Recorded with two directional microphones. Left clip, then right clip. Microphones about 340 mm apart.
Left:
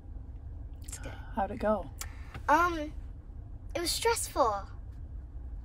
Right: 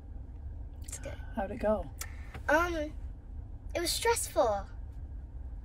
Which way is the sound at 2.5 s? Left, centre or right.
Centre.